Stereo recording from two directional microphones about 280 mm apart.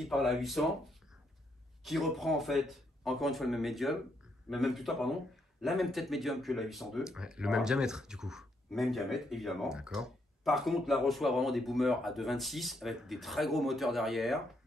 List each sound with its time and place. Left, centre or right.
0.0 s speech: centre
1.9 s speech: centre